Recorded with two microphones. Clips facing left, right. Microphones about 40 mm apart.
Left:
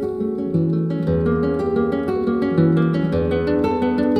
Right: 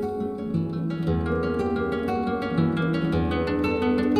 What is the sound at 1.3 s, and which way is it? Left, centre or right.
Music, centre.